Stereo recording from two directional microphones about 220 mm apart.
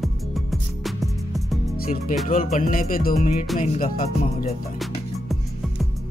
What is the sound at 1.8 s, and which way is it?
Speech, 40° left (ahead or behind).